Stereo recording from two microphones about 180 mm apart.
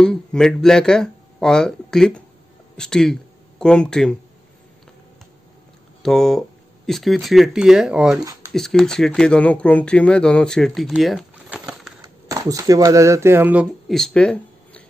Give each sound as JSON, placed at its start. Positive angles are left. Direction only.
{"t": 0.0, "sound": "speech", "side_deg": 5}
{"t": 6.0, "sound": "speech", "side_deg": 5}
{"t": 8.2, "sound": "speech", "side_deg": -20}
{"t": 8.5, "sound": "speech", "side_deg": 0}
{"t": 12.0, "sound": "speech", "side_deg": -20}